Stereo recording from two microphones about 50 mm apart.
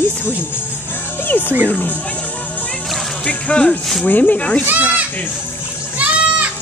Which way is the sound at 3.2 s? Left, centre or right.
Left.